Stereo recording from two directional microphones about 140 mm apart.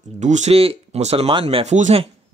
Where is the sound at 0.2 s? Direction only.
55° right (ahead or behind).